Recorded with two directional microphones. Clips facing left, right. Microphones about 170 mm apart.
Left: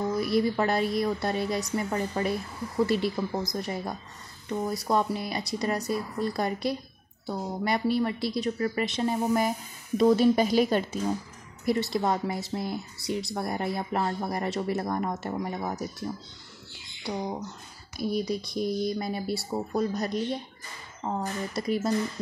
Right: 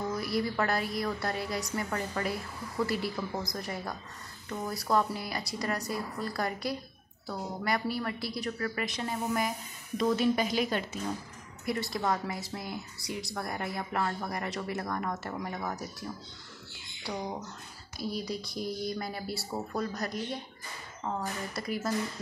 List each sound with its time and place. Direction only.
0.2 s a woman's voice: 25° left (ahead or behind)
11.6 s a woman's voice: 25° left (ahead or behind)
17.0 s a woman's voice: 15° left (ahead or behind)